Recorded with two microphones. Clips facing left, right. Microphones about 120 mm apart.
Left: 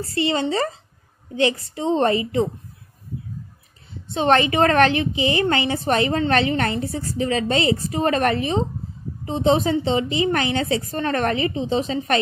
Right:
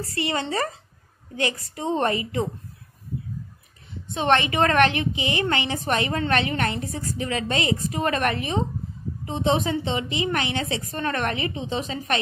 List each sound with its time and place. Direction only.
0.0 s a woman's voice: 25° left (ahead or behind)
4.1 s a woman's voice: 30° left (ahead or behind)